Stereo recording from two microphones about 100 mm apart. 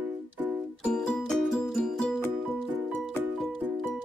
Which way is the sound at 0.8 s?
10° left (ahead or behind).